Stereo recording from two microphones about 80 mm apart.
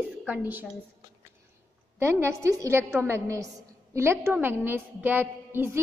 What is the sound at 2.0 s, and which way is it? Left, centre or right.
A woman's voice, right.